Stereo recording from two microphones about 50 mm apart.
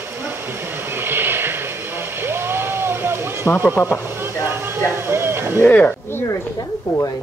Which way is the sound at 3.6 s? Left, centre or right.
Left.